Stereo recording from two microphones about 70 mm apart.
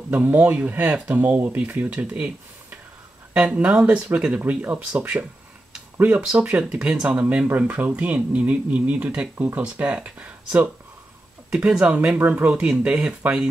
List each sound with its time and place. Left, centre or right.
0.1 s speech: right